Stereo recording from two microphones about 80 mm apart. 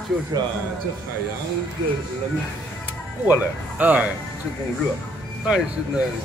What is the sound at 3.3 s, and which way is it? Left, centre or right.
Speech, right.